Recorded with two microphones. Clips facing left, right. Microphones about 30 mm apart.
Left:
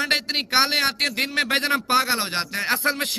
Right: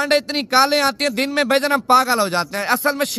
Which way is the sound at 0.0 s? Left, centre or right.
Centre.